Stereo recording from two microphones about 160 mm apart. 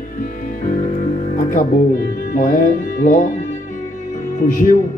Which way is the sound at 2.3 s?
55° left (ahead or behind).